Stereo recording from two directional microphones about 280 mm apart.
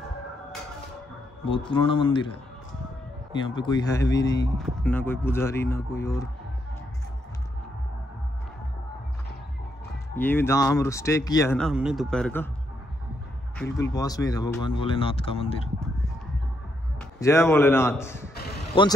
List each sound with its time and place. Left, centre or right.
1.4 s speech: centre
3.3 s speech: centre
10.1 s speech: centre
13.9 s speech: centre
17.2 s speech: centre
18.3 s basketball bounce: left